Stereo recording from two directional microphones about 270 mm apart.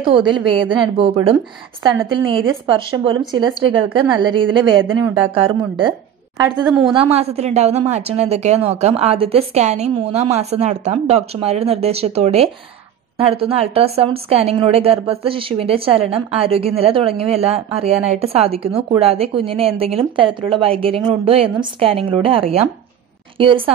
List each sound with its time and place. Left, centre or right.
0.0 s a woman's voice: centre